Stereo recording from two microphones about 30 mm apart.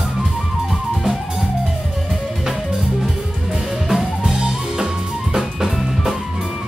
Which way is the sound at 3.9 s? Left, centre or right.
Centre.